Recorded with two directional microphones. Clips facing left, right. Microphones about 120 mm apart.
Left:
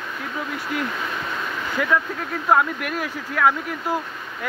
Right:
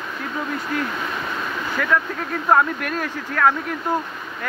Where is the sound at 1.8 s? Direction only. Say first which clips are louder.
Left 1 dB; 15° left (ahead or behind).